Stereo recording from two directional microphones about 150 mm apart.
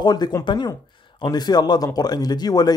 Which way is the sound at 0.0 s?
25° left (ahead or behind).